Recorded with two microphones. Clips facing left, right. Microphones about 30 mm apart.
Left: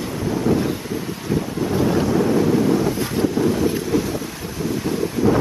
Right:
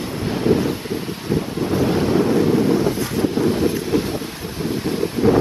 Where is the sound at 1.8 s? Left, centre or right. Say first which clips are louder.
Right 1 dB; right.